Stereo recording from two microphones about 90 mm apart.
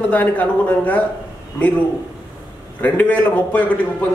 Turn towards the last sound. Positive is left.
turn(degrees=20)  # may be behind; listen again after turning